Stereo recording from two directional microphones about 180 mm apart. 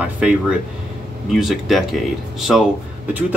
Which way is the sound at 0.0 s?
5° right (ahead or behind).